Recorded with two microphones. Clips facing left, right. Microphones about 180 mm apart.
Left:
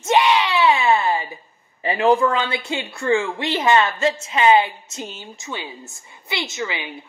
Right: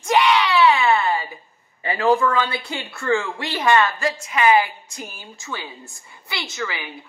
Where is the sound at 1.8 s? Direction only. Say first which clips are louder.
Left 2 dB; 20° left (ahead or behind).